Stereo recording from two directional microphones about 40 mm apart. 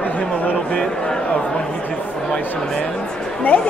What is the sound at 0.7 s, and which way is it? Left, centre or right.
Speech, left.